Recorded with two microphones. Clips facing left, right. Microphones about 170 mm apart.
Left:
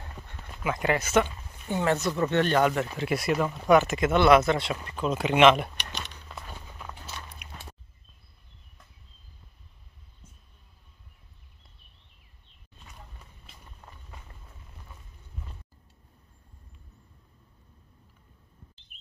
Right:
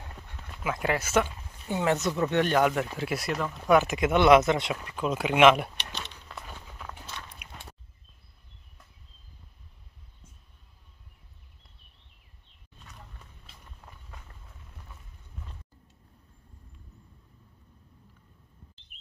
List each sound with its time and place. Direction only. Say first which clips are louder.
0.4 s speech: left 1 dB; centre (ahead or behind)
3.8 s speech: even; 10° right (ahead or behind)
6.1 s walk: left 1 dB; centre (ahead or behind)
7.4 s a sound: left 1 dB; 10° right (ahead or behind)
12.7 s walk: even; 10° left (ahead or behind)